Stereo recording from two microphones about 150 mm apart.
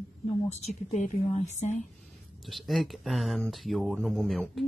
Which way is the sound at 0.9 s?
50° left (ahead or behind).